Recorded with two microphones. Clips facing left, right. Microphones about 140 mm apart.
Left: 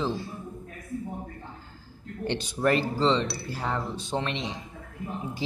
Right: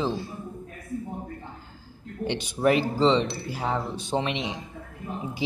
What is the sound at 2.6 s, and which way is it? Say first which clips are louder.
Speech: right 3 dB; 15° right (ahead or behind).